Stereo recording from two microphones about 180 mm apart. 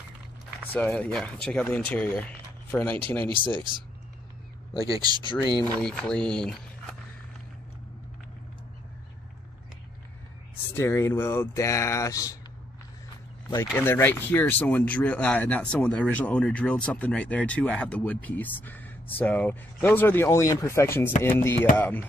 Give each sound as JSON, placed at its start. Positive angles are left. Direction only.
{"t": 0.7, "sound": "speech", "side_deg": 5}
{"t": 4.9, "sound": "speech", "side_deg": -25}
{"t": 5.8, "sound": "speech", "side_deg": 5}
{"t": 10.7, "sound": "speech", "side_deg": 15}
{"t": 13.7, "sound": "speech", "side_deg": 10}